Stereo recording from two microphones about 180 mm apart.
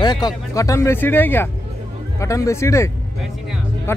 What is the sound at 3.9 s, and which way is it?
Speech, 15° left (ahead or behind).